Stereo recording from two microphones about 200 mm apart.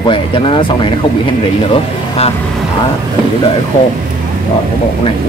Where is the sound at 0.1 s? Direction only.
25° left (ahead or behind).